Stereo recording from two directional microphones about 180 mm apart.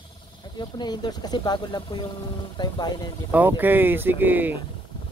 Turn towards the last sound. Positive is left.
turn(degrees=-10)  # may be behind; listen again after turning